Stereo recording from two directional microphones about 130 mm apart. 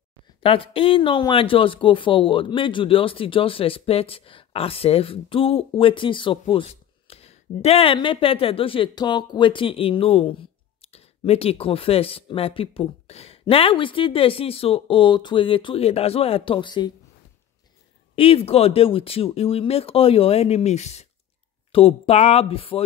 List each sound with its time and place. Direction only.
0.4 s speech: 45° left (ahead or behind)
18.1 s speech: 45° left (ahead or behind)
21.7 s speech: 50° left (ahead or behind)